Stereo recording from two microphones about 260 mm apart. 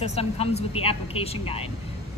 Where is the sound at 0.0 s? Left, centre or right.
Left.